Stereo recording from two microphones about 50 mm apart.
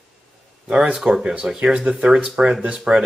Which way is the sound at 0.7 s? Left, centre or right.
Centre.